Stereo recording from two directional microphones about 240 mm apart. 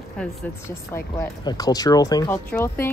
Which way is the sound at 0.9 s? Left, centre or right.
Centre.